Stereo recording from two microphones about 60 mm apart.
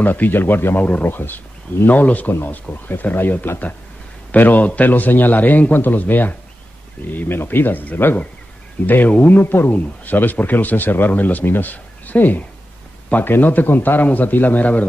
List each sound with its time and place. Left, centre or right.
0.0 s a man's voice: left